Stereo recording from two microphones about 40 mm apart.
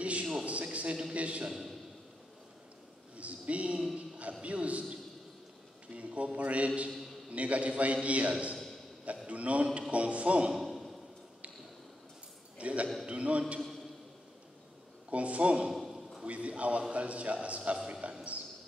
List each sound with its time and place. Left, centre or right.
0.0 s a sound: right
1.1 s a man's voice: right
1.5 s a man's voice: centre
3.2 s a sound: right
4.2 s a man's voice: right
5.9 s a man's voice: right
10.5 s a sound: centre
12.5 s a man's voice: right
15.0 s a man's voice: right
15.7 s a sound: centre
16.3 s a man's voice: right
17.6 s a man's voice: right